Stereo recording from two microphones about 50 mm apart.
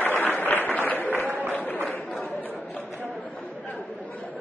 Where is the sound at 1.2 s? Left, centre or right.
Right.